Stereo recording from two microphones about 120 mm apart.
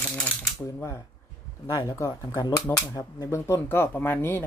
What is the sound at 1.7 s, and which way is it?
Speech, 30° left (ahead or behind).